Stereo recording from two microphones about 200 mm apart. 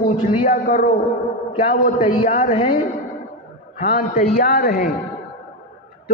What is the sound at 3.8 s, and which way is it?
A man's voice, 45° left (ahead or behind).